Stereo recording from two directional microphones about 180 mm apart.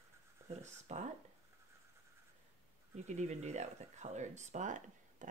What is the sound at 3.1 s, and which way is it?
Speech, 40° right (ahead or behind).